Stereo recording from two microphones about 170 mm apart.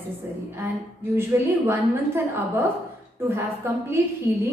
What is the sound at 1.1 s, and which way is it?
A woman's voice, 15° right (ahead or behind).